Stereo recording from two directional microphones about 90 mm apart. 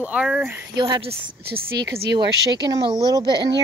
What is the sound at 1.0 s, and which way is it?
Speech, 90° right.